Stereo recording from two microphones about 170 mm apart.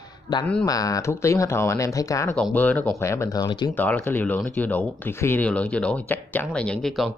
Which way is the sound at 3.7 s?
10° left (ahead or behind).